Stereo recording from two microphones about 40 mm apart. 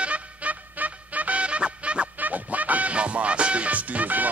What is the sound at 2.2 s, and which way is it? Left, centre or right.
Music, right.